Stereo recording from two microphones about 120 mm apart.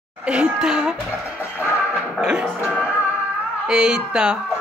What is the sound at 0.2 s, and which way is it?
Speech, 5° right (ahead or behind).